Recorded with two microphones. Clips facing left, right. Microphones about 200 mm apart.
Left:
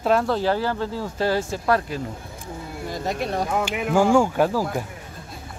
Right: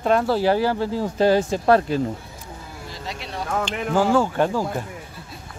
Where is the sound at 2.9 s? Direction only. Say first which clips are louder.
Left 9 dB; 50° left (ahead or behind).